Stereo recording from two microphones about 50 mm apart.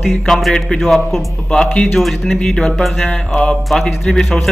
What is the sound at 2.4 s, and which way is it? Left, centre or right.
Music, centre.